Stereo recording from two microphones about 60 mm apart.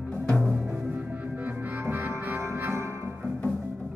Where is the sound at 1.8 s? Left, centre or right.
Right.